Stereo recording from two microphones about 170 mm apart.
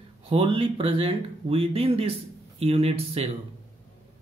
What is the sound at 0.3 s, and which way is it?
Speech, 30° right (ahead or behind).